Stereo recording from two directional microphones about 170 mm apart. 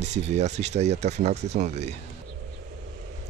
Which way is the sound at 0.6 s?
40° right (ahead or behind).